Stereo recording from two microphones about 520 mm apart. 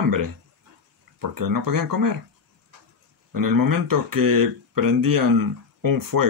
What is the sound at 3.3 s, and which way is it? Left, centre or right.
Speech, right.